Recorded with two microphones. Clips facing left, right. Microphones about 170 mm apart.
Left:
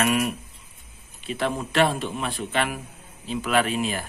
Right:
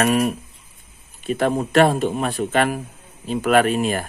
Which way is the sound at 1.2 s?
45° right (ahead or behind).